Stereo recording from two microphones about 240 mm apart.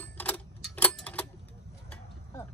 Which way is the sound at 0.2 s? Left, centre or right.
Centre.